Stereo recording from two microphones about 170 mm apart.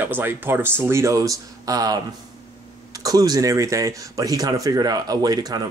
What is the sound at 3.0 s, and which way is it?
Speech, 20° right (ahead or behind).